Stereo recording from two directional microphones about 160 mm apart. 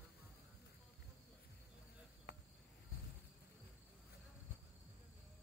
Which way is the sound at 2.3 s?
90° left.